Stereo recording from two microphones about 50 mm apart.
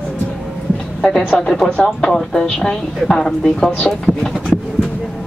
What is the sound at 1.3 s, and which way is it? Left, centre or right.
Speech, centre.